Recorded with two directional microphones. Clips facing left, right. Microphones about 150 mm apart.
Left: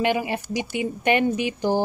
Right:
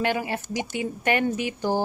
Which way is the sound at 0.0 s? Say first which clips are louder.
Left 3 dB; 15° left (ahead or behind).